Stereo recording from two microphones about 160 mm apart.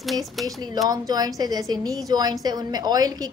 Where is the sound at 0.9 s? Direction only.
25° right (ahead or behind).